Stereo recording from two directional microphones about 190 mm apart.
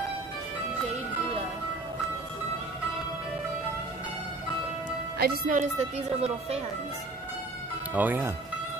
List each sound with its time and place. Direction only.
5.2 s speech: 55° right (ahead or behind)
5.6 s speech: 35° right (ahead or behind)
7.9 s speech: 10° right (ahead or behind)